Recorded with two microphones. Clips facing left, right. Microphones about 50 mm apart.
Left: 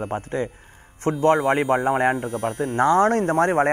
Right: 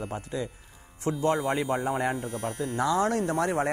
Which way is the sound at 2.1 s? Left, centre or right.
Centre.